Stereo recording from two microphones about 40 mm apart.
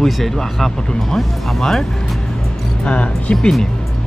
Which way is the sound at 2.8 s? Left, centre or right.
Left.